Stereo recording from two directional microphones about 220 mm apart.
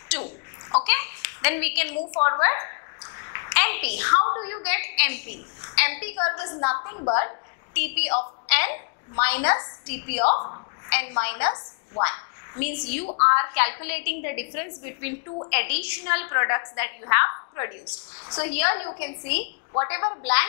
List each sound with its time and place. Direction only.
0.1 s a sound: 20° left (ahead or behind)
2.2 s a woman's voice: 15° left (ahead or behind)
3.2 s a sound: 15° left (ahead or behind)
4.3 s a woman's voice: 20° left (ahead or behind)
5.6 s a sound: 10° left (ahead or behind)
6.4 s a woman's voice: 25° left (ahead or behind)
7.2 s a woman's voice: 10° left (ahead or behind)
9.2 s a woman's voice: 10° left (ahead or behind)
10.2 s a woman's voice: 30° left (ahead or behind)
10.9 s a woman's voice: 10° left (ahead or behind)
13.0 s a woman's voice: 30° left (ahead or behind)
13.3 s a woman's voice: 15° left (ahead or behind)